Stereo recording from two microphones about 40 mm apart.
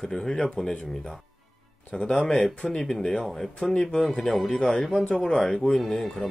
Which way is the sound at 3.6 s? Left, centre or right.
Left.